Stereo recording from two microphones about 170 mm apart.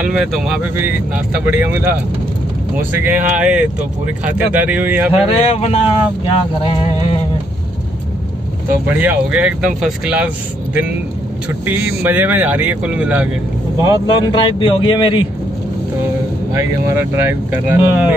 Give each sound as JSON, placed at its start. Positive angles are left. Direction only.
{"t": 0.0, "sound": "speech", "side_deg": -5}
{"t": 5.2, "sound": "speech", "side_deg": 35}
{"t": 8.8, "sound": "speech", "side_deg": -10}
{"t": 13.8, "sound": "a man's voice", "side_deg": 30}
{"t": 16.9, "sound": "speech", "side_deg": -10}